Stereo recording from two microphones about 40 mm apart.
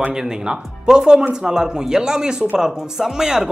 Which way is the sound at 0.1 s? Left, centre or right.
Centre.